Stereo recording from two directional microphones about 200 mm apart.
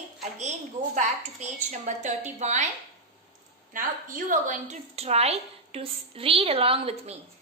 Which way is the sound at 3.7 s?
40° right (ahead or behind).